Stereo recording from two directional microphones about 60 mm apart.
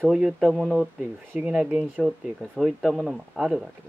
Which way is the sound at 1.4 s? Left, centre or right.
Right.